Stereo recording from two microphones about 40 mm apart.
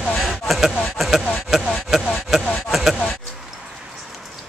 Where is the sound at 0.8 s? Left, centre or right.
Centre.